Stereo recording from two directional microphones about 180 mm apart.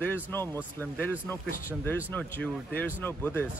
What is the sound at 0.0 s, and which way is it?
Speech, 15° left (ahead or behind).